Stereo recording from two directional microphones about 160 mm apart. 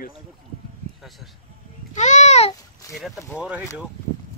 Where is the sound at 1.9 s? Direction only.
45° left (ahead or behind).